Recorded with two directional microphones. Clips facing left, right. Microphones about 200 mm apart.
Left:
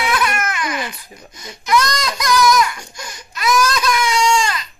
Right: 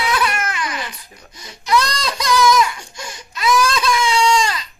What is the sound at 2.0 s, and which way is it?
Baby cry, 30° right (ahead or behind).